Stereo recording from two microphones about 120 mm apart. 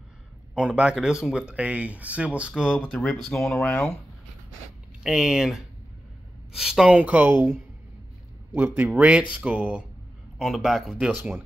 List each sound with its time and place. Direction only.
0.6 s speech: 10° right (ahead or behind)
2.9 s speech: 5° left (ahead or behind)
5.0 s speech: 5° right (ahead or behind)